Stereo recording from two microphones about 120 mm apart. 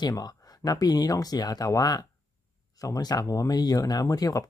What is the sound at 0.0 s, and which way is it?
Speech, 30° left (ahead or behind).